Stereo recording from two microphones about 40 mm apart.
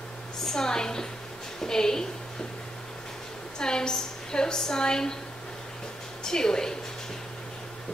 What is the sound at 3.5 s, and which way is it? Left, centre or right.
A woman's voice, centre.